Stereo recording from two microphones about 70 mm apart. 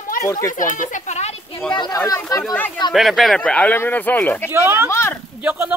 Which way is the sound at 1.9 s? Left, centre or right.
Left.